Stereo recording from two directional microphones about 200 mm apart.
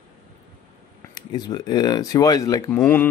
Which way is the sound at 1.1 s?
20° left (ahead or behind).